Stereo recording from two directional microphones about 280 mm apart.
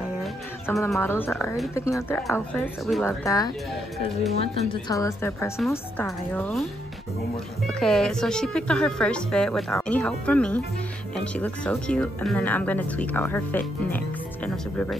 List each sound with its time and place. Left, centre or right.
0.0 s a sound: centre
1.8 s a woman's voice: centre
7.6 s speech: centre